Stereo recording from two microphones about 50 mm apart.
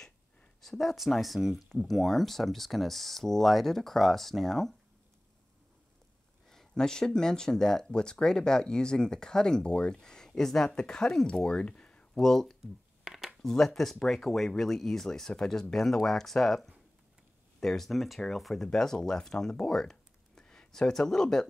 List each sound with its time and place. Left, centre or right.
0.6 s speech: centre
6.5 s speech: centre
13.0 s a sound: centre
13.4 s speech: centre